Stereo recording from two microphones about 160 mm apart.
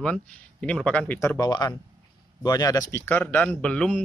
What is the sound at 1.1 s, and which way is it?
Speech, 20° left (ahead or behind).